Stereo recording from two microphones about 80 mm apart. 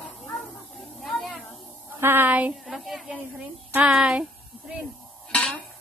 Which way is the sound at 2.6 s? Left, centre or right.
Centre.